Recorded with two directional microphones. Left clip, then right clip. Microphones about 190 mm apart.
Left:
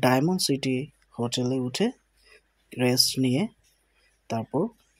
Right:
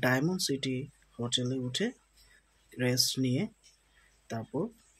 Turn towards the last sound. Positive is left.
turn(degrees=25)  # may be behind; listen again after turning